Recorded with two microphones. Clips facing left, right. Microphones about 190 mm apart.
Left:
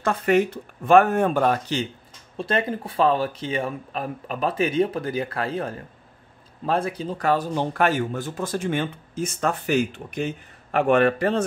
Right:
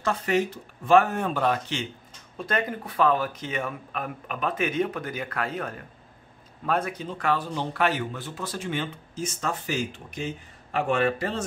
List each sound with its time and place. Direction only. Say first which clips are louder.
0.0 s speech: left 5 dB; 55° left (ahead or behind)
2.3 s speech: left 4 dB; 30° left (ahead or behind); by 11.4 s 60° left (ahead or behind)